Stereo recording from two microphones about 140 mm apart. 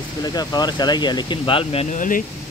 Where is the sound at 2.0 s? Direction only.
75° left (ahead or behind).